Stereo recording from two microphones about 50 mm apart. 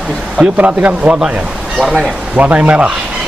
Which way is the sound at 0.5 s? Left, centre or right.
Right.